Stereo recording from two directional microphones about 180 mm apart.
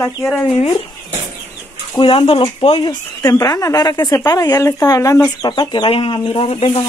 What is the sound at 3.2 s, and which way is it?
A woman's voice, 20° left (ahead or behind).